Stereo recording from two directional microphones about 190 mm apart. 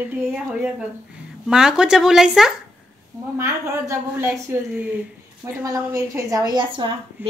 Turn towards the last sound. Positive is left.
turn(degrees=-25)  # may be behind; listen again after turning